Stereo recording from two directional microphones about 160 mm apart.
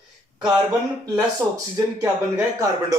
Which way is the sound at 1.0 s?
20° right (ahead or behind).